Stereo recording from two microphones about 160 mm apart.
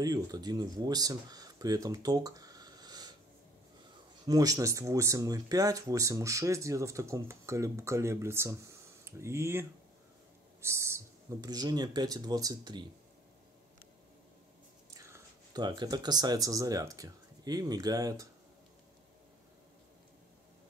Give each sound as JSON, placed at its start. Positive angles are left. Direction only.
{"t": 0.0, "sound": "speech", "side_deg": -25}
{"t": 4.3, "sound": "speech", "side_deg": -20}
{"t": 15.0, "sound": "speech", "side_deg": -20}